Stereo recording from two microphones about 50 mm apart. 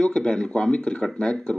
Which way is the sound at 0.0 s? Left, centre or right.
Centre.